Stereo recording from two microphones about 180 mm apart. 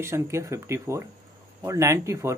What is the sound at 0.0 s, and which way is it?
Speech, 15° right (ahead or behind).